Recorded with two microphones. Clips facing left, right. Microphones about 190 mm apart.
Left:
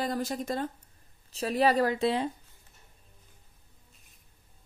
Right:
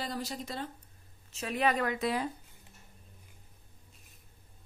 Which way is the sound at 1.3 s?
35° left (ahead or behind).